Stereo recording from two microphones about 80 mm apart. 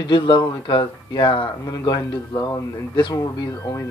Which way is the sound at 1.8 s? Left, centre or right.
Left.